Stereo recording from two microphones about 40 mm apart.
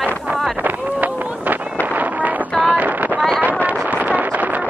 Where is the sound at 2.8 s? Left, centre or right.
Right.